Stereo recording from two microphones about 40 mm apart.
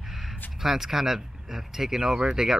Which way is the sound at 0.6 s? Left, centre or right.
Centre.